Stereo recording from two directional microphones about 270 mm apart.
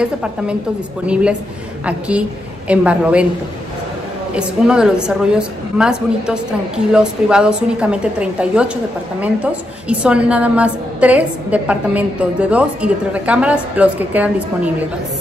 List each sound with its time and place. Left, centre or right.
0.0 s a woman's voice: centre
4.4 s a woman's voice: centre